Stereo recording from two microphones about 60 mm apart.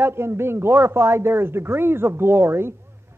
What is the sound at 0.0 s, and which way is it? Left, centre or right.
A man's voice, right.